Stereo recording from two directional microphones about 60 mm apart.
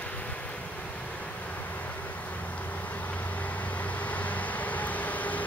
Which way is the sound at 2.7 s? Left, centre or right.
Left.